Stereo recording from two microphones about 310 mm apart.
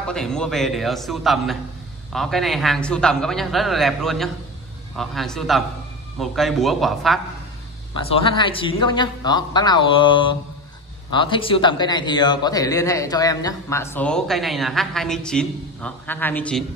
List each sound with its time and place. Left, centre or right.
0.1 s a man's voice: centre
7.9 s a man's voice: centre